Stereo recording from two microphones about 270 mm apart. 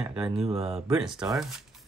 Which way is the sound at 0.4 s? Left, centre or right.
Right.